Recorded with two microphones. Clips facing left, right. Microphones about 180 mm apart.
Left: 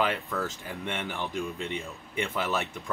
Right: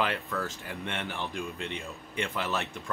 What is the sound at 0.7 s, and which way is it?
Speech, centre (ahead or behind).